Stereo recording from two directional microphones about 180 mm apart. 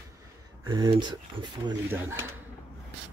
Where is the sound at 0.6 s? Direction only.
25° right (ahead or behind).